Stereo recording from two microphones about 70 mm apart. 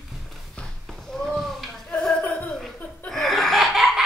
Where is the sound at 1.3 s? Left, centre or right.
Centre.